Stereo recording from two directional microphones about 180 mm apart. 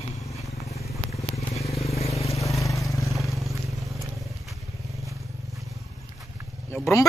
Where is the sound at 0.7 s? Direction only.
35° left (ahead or behind).